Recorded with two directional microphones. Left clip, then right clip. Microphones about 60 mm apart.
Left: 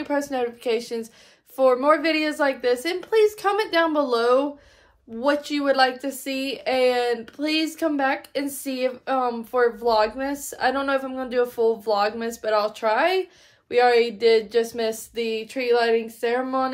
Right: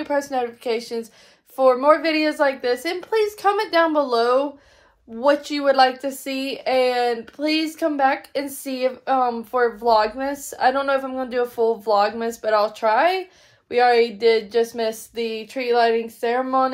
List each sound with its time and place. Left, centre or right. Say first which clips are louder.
0.0 s a woman's voice: right 2 dB; left